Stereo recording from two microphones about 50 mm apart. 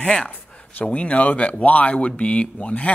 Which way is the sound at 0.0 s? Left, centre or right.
Centre.